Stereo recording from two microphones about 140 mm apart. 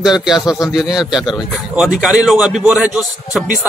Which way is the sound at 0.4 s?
25° left (ahead or behind).